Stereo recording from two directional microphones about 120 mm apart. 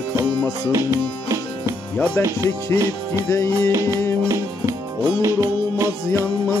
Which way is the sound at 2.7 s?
20° left (ahead or behind).